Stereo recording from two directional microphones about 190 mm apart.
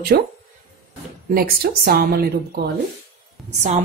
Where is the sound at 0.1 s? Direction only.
50° right (ahead or behind).